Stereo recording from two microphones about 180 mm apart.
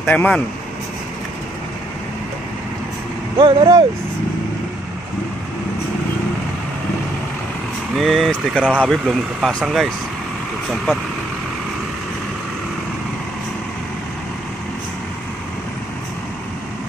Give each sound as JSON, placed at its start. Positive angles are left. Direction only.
{"t": 0.0, "sound": "speech", "side_deg": 10}
{"t": 3.3, "sound": "speech", "side_deg": -30}
{"t": 7.9, "sound": "speech", "side_deg": 0}